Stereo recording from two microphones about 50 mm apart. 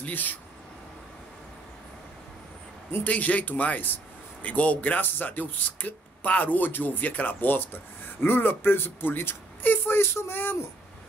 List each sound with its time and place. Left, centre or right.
0.0 s speech: left
3.1 s speech: left